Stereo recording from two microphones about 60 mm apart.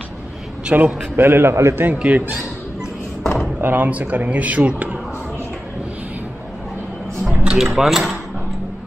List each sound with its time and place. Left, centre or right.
0.7 s speech: centre
1.1 s a man's voice: right
2.0 s speech: centre
3.6 s speech: right
7.5 s speech: centre